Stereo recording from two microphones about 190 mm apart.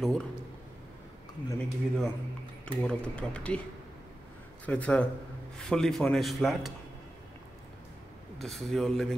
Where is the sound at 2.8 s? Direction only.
5° left (ahead or behind).